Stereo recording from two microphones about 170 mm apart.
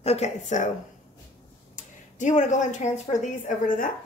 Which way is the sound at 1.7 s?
45° left (ahead or behind).